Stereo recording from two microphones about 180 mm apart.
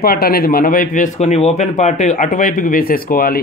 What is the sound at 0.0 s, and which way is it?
Speech, 55° left (ahead or behind).